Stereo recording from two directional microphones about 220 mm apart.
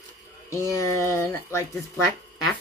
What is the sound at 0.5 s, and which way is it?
Speech, 15° left (ahead or behind).